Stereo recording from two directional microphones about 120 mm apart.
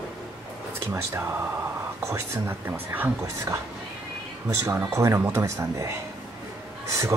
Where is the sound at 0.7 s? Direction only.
20° right (ahead or behind).